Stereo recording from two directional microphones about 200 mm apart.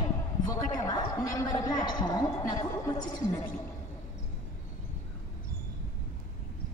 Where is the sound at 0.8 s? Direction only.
20° left (ahead or behind).